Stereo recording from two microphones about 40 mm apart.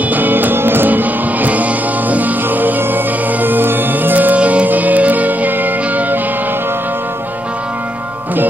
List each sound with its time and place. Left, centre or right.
0.1 s music: right
0.8 s music: right
4.4 s music: right
4.6 s music: right